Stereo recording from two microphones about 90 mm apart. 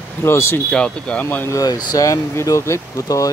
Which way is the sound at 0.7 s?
10° left (ahead or behind).